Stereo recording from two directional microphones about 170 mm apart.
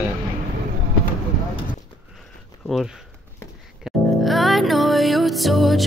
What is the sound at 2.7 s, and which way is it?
Speech, centre (ahead or behind).